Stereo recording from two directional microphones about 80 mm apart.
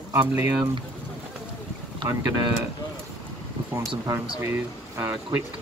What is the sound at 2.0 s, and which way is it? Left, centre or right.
Speech, right.